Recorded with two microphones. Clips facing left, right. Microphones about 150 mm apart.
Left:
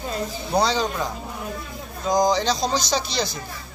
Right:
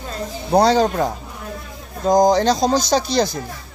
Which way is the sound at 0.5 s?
55° right (ahead or behind).